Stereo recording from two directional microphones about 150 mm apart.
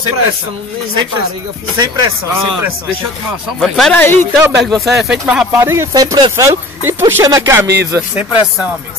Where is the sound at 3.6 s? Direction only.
Centre (ahead or behind).